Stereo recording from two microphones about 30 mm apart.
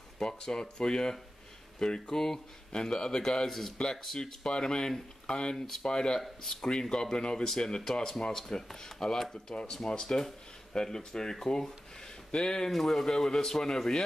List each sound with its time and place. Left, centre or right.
0.2 s speech: left
2.0 s a man's voice: centre
3.3 s a man's voice: centre
4.2 s speech: left
7.4 s a man's voice: centre
12.7 s a man's voice: centre
13.0 s a man's voice: centre